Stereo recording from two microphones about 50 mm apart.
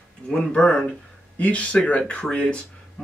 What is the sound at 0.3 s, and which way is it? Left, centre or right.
Speech, centre.